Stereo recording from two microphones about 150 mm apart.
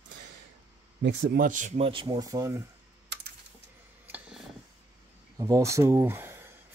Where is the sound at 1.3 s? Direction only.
60° right (ahead or behind).